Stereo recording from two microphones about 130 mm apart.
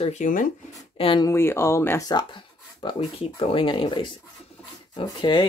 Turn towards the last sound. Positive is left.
turn(degrees=35)  # may be behind; listen again after turning